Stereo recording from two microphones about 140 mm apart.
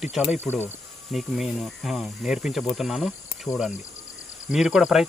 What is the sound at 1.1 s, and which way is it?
Speech, centre (ahead or behind).